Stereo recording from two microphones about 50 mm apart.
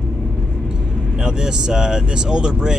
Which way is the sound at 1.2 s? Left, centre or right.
Centre.